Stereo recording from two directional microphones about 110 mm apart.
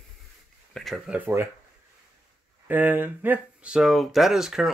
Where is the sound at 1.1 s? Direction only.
20° right (ahead or behind).